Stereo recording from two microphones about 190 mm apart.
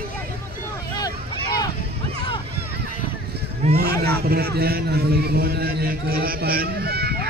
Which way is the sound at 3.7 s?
55° right (ahead or behind).